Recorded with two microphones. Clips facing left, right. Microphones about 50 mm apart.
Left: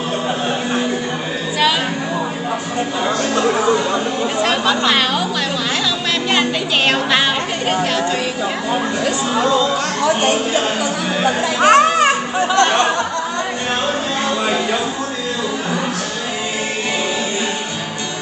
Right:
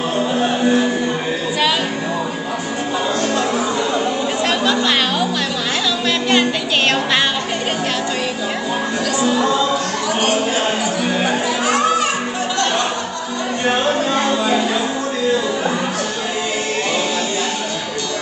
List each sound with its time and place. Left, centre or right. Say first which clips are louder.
3.2 s chatter: left 4 dB; left
4.4 s chatter: left 2 dB; centre
9.0 s music: right 4 dB; left
11.6 s children playing: left 7 dB; left